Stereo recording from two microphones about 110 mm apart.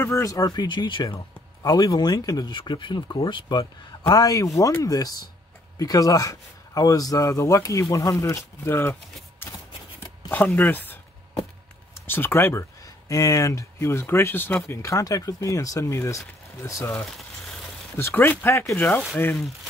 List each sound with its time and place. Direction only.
0.0 s a man's voice: 30° left (ahead or behind); by 1.0 s 45° left (ahead or behind)
1.0 s a man's voice: 35° left (ahead or behind)
4.1 s a man's voice: 30° left (ahead or behind)
10.3 s speech: 20° left (ahead or behind)
12.1 s speech: 20° left (ahead or behind)
17.9 s speech: 20° left (ahead or behind)